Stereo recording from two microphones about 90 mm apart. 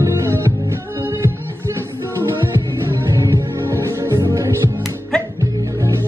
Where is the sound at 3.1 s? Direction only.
35° right (ahead or behind).